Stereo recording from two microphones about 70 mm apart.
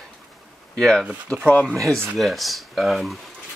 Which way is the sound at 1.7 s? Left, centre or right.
Centre.